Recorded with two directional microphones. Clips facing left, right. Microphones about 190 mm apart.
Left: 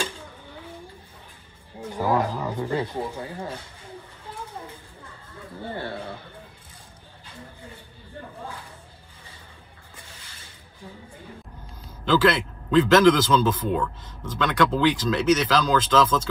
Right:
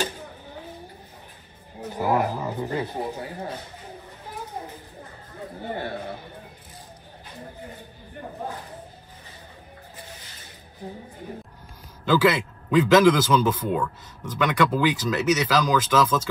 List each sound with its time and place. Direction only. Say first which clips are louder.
2.0 s a sound: even; 15° right (ahead or behind)
2.6 s a man's voice: left 3 dB; 15° right (ahead or behind)
12.0 s a man's voice: even; 10° right (ahead or behind)